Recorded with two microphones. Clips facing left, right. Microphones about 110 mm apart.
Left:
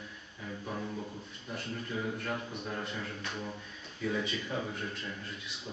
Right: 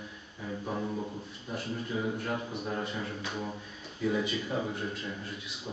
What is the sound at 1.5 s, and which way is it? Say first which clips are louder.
Speech: right 3 dB; 5° right (ahead or behind).